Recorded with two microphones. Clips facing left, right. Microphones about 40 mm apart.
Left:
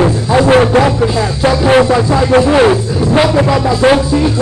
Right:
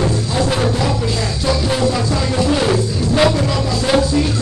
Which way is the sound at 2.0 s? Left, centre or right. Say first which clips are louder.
Left 8 dB; left.